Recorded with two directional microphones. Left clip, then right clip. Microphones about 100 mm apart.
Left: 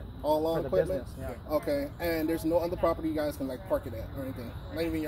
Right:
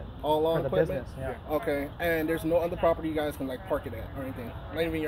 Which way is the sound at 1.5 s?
25° right (ahead or behind).